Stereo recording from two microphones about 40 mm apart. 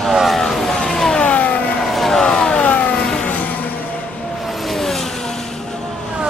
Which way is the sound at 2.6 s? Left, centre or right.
Left.